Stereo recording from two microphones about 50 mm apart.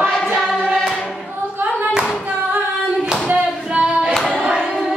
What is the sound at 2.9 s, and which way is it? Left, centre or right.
Clapping, centre.